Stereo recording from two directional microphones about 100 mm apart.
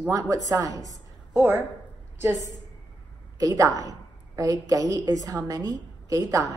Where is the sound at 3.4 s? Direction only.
35° right (ahead or behind).